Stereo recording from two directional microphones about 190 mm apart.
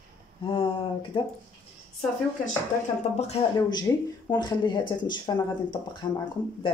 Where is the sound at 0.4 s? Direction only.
25° left (ahead or behind).